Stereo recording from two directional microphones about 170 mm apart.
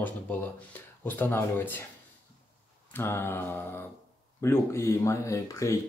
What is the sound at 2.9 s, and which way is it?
Speech, 15° left (ahead or behind).